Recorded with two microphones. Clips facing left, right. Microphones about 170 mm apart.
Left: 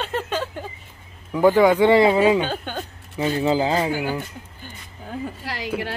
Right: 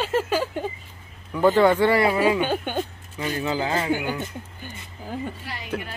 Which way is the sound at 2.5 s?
15° right (ahead or behind).